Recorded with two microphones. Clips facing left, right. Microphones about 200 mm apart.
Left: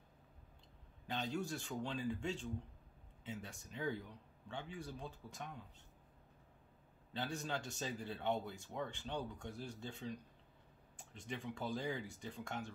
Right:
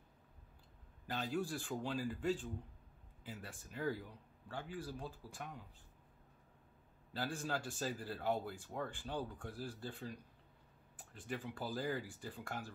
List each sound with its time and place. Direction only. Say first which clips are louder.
1.0 s speech: right 1 dB; 5° right (ahead or behind)
7.1 s speech: right 1 dB; 5° right (ahead or behind)